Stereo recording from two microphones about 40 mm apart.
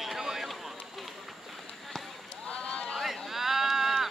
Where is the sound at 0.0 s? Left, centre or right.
Centre.